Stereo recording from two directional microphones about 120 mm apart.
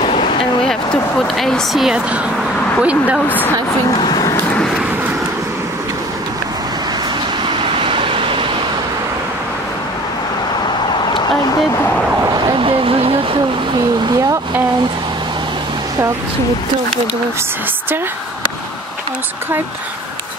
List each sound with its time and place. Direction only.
0.0 s a sound: 55° left (ahead or behind)
0.7 s speech: centre (ahead or behind)
3.3 s a woman's voice: 15° left (ahead or behind)
4.0 s speech: 30° left (ahead or behind)
7.8 s vehicle: 45° right (ahead or behind)
12.4 s a sound: 40° right (ahead or behind)